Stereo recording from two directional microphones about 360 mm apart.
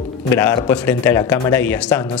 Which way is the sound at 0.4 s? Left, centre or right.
Centre.